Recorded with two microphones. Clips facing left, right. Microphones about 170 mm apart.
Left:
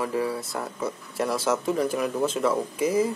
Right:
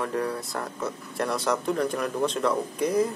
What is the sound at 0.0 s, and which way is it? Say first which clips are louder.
Speech: left 1 dB; 5° left (ahead or behind).